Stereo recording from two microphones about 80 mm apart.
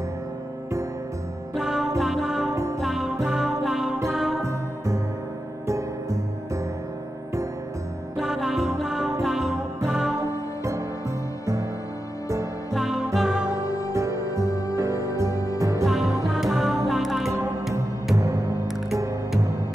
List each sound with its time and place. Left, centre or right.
1.5 s music: centre
4.4 s music: right
8.2 s music: centre
12.7 s music: centre
13.6 s music: left
13.9 s music: right
14.4 s music: left
15.6 s music: right
15.9 s music: centre
18.1 s music: right